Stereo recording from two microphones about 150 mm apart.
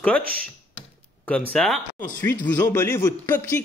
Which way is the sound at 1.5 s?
5° left (ahead or behind).